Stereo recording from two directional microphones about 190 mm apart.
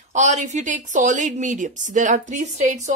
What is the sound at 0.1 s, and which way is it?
A woman's voice, 40° right (ahead or behind).